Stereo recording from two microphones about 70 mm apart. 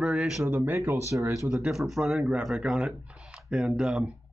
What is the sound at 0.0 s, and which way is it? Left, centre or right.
Speech, centre.